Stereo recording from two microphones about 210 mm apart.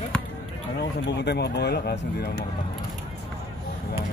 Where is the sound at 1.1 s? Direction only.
55° left (ahead or behind).